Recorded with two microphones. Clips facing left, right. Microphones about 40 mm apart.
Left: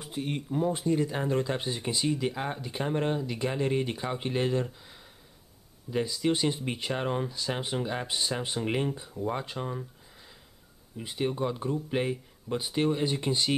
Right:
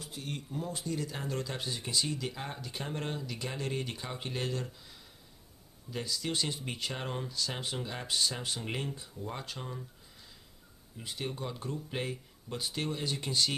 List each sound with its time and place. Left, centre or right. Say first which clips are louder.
0.0 s speech: left 8 dB; left
11.0 s speech: left 8 dB; centre